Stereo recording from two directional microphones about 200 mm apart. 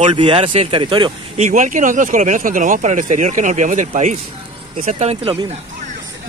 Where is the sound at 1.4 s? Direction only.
40° right (ahead or behind).